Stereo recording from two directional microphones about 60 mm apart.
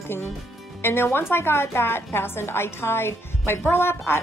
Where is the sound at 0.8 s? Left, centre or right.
Left.